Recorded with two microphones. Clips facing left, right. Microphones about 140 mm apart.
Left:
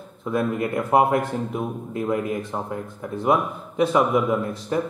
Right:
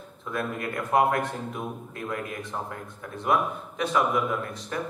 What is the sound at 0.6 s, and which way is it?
Speech, 30° left (ahead or behind).